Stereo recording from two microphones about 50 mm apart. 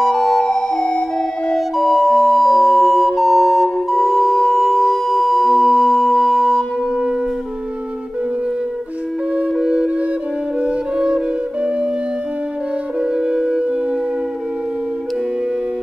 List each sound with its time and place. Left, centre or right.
0.0 s music: centre
1.5 s music: centre
9.6 s music: right
13.0 s music: centre